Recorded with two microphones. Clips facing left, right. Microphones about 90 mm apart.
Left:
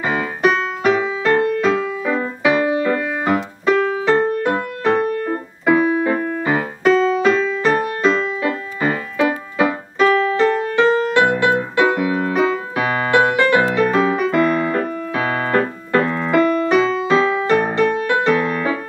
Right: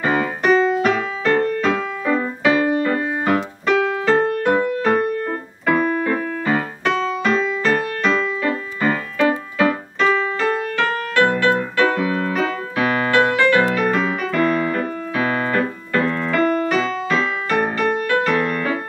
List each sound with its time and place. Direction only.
0.0 s music: 10° left (ahead or behind)
5.3 s keyboard: 5° left (ahead or behind)
8.4 s music: 15° left (ahead or behind)
14.3 s keyboard: 15° left (ahead or behind)